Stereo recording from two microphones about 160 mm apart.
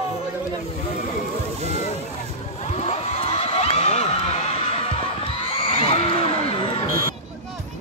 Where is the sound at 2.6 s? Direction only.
40° left (ahead or behind).